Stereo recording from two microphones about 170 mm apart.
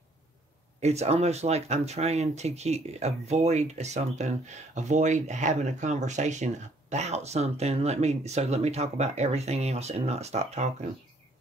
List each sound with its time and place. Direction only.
0.7 s speech: 40° right (ahead or behind)